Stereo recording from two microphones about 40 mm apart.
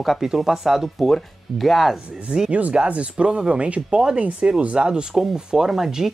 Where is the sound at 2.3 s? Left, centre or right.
Right.